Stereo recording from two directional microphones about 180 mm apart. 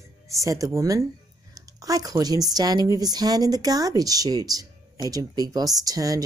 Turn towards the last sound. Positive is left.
turn(degrees=-20)  # may be behind; listen again after turning